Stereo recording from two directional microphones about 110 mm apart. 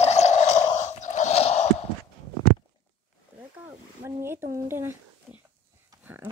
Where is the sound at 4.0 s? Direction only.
20° right (ahead or behind).